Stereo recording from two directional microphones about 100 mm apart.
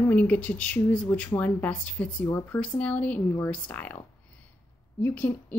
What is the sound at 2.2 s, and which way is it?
Speech, 25° left (ahead or behind).